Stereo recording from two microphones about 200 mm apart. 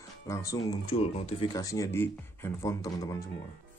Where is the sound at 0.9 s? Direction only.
30° left (ahead or behind).